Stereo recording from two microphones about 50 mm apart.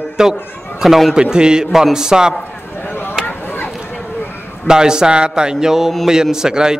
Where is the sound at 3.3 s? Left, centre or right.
Left.